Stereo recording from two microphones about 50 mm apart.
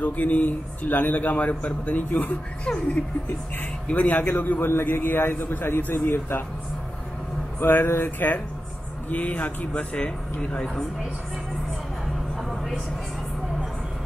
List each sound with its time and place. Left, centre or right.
0.0 s a man's voice: left
2.6 s a man's voice: left
5.0 s a man's voice: left
7.6 s a man's voice: left
9.1 s speech: left